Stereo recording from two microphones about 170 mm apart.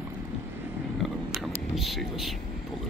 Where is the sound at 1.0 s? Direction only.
Centre (ahead or behind).